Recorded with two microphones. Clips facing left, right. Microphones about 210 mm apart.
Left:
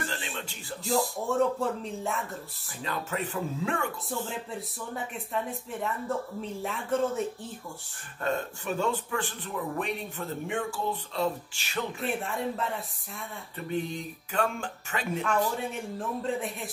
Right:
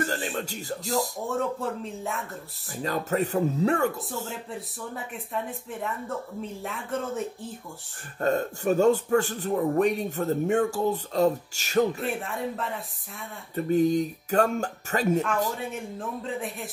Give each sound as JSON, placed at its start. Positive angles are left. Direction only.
{"t": 0.0, "sound": "music", "side_deg": -45}
{"t": 1.2, "sound": "speech", "side_deg": 0}
{"t": 2.8, "sound": "speech", "side_deg": -40}
{"t": 4.3, "sound": "speech", "side_deg": 0}
{"t": 8.2, "sound": "a man's voice", "side_deg": -40}
{"t": 12.0, "sound": "speech", "side_deg": 0}
{"t": 13.6, "sound": "a man's voice", "side_deg": -40}
{"t": 15.5, "sound": "speech", "side_deg": 0}